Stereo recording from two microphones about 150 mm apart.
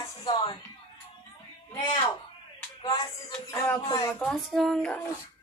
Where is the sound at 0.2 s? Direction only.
30° left (ahead or behind).